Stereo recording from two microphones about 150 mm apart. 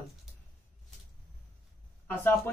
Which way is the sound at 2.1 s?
15° left (ahead or behind).